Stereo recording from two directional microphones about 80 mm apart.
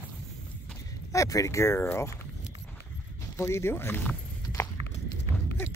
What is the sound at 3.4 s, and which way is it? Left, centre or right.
Speech, left.